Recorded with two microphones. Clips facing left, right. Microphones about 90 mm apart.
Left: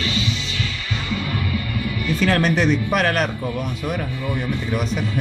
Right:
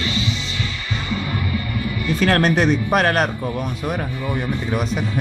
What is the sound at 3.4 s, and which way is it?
Speech, 25° right (ahead or behind).